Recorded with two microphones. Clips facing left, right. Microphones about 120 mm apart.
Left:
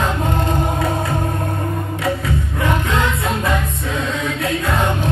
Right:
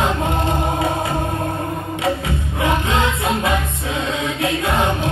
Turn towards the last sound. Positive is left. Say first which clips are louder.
# right 1 dB
turn(degrees=-15)  # may be behind; listen again after turning